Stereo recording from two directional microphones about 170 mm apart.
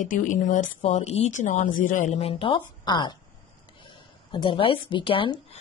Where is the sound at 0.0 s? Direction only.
50° left (ahead or behind).